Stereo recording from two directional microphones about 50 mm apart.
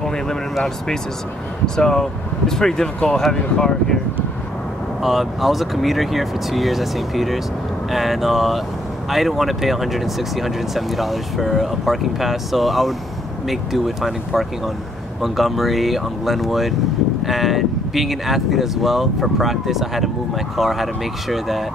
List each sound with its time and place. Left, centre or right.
0.0 s a sound: centre
1.8 s speech: centre
5.0 s speech: centre